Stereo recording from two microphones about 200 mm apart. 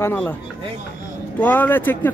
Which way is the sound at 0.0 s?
10° left (ahead or behind).